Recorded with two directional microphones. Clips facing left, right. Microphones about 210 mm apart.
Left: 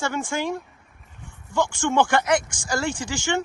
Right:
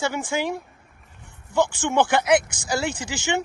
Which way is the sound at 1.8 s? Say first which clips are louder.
Even; 20° right (ahead or behind).